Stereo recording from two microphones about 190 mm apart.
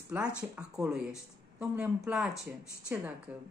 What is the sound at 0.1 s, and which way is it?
Speech, 10° right (ahead or behind).